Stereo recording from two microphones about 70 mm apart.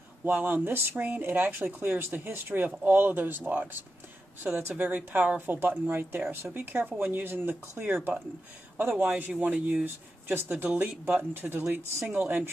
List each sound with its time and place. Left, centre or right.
0.2 s speech: right